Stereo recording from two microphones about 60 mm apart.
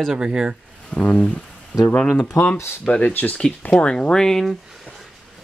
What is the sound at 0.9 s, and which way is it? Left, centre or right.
Speech, centre.